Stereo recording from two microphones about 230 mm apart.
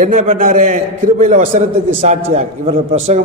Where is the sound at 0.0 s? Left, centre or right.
Right.